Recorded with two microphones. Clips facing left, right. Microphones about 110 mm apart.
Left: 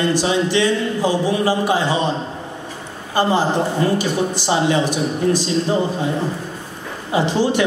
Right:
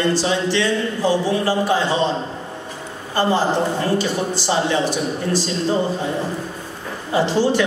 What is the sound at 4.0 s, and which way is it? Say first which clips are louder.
Speech: left 1 dB; 15° left (ahead or behind).